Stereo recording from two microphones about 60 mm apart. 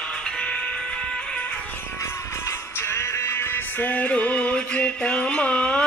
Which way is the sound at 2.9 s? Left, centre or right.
Left.